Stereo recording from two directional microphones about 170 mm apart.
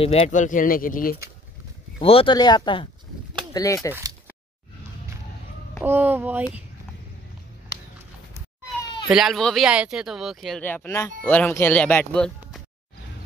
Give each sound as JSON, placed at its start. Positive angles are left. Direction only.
{"t": 0.0, "sound": "speech", "side_deg": 35}
{"t": 0.3, "sound": "speech", "side_deg": 50}
{"t": 2.0, "sound": "speech", "side_deg": 35}
{"t": 3.9, "sound": "a sound", "side_deg": -20}
{"t": 5.9, "sound": "speech", "side_deg": -10}
{"t": 9.1, "sound": "speech", "side_deg": 0}
{"t": 10.6, "sound": "speech", "side_deg": 10}